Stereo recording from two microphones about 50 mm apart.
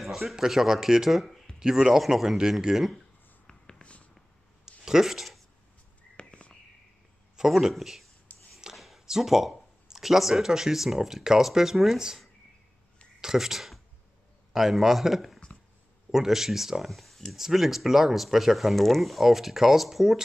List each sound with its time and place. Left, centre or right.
0.0 s speech: centre
1.6 s speech: centre
3.4 s a sound: centre
3.8 s a sound: left
4.8 s speech: centre
6.1 s whispering: left
7.3 s speech: centre
8.7 s a sound: centre
9.0 s speech: centre
13.2 s speech: centre